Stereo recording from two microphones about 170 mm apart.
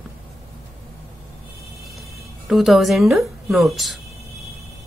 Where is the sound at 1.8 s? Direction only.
Centre (ahead or behind).